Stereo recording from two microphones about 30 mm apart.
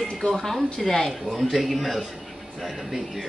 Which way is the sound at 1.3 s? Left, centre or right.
Centre.